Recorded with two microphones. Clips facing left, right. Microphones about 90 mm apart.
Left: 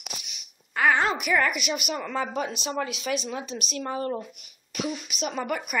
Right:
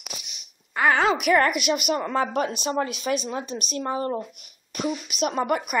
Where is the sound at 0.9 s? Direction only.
60° right (ahead or behind); by 3.5 s 40° right (ahead or behind).